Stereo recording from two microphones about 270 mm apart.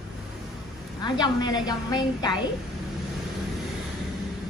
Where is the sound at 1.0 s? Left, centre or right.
Centre.